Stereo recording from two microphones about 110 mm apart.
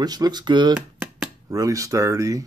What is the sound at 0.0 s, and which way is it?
Speech, 35° right (ahead or behind).